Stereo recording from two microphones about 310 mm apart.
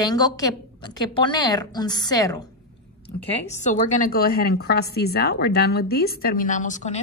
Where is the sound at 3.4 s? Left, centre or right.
Left.